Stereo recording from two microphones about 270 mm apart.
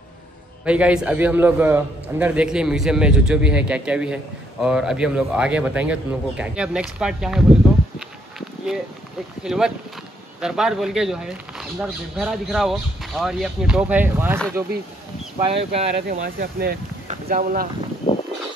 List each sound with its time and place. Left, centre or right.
0.7 s a man's voice: centre
8.4 s a sound: centre
9.4 s a man's voice: centre
15.3 s speech: right